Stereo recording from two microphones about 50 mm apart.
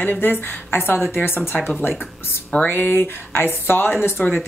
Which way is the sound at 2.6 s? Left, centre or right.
Left.